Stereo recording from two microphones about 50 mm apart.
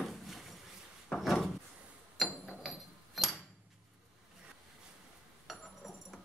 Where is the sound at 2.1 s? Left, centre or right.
Centre.